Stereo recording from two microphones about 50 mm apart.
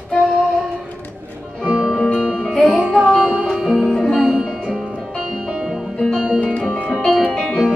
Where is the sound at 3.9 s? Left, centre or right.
Centre.